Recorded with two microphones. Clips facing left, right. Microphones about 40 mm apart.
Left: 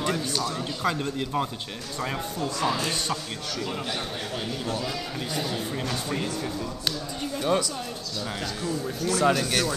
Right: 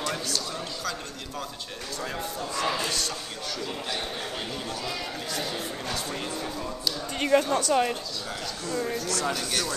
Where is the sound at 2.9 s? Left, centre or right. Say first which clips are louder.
Left 2 dB; left.